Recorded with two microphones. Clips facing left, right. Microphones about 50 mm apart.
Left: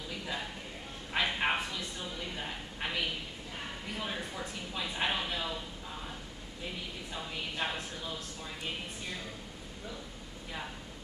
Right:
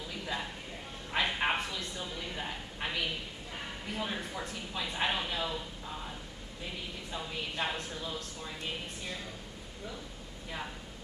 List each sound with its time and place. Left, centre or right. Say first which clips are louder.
1.1 s a sound: even; centre
3.5 s speech: right 2 dB; centre
7.1 s speech: right 2 dB; centre